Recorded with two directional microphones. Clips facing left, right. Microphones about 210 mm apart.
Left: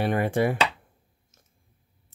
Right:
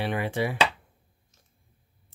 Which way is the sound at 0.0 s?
50° left (ahead or behind).